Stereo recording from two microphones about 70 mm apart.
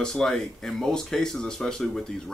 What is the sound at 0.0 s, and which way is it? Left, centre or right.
Speech, centre.